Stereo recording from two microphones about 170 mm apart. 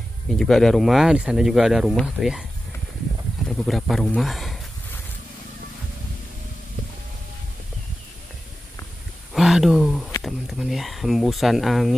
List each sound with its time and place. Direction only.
0.4 s speech: 5° left (ahead or behind)
3.4 s speech: centre (ahead or behind)
9.3 s a sound: centre (ahead or behind)
10.2 s speech: centre (ahead or behind)